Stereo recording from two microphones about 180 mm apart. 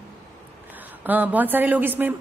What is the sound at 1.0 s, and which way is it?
A woman's voice, 10° right (ahead or behind).